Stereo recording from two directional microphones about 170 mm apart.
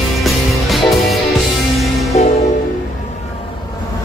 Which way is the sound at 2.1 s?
40° left (ahead or behind).